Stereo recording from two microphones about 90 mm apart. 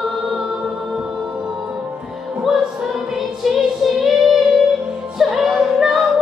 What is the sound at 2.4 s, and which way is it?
Music, 5° right (ahead or behind).